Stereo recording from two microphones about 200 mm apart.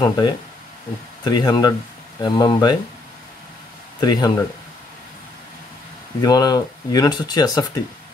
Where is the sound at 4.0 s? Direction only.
20° left (ahead or behind).